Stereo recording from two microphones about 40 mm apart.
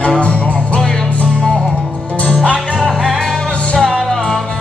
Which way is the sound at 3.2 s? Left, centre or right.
Centre.